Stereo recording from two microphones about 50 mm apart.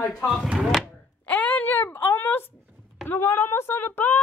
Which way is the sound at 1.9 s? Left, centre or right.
Left.